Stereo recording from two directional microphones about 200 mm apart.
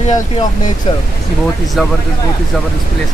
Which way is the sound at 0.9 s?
30° left (ahead or behind).